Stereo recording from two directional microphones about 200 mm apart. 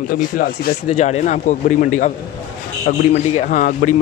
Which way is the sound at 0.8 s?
35° left (ahead or behind).